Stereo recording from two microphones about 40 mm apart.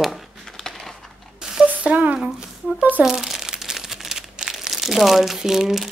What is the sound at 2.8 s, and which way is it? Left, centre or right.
Shuffling cards, right.